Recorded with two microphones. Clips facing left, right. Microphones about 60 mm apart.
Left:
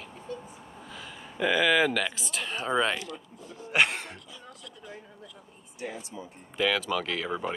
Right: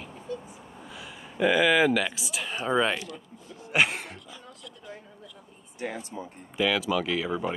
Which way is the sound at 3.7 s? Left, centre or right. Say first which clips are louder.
Even; centre.